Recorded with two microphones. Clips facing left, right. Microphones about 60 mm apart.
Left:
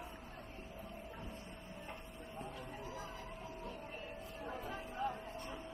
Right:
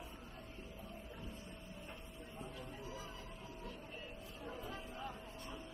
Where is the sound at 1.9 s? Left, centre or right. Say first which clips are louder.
Left 3 dB; left.